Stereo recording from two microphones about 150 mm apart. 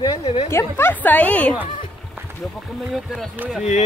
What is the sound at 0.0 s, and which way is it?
Speech, 35° left (ahead or behind).